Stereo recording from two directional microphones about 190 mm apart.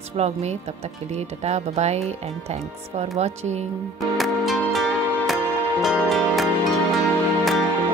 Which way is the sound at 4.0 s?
Centre (ahead or behind).